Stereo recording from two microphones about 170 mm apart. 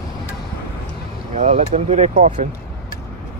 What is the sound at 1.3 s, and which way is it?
Speech, 45° right (ahead or behind).